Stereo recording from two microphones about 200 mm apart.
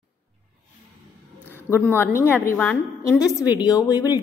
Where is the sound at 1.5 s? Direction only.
10° left (ahead or behind).